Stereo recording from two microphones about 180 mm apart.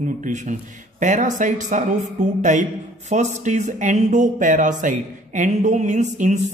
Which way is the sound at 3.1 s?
40° right (ahead or behind).